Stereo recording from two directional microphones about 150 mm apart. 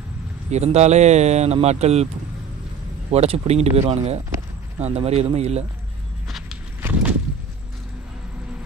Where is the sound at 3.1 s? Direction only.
45° right (ahead or behind).